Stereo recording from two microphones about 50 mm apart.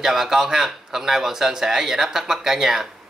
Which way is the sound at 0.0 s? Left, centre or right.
Centre.